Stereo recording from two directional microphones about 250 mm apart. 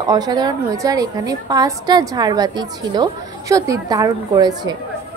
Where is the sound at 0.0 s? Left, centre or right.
Centre.